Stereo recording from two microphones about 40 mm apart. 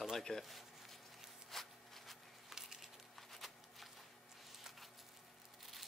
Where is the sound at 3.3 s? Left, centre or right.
Centre.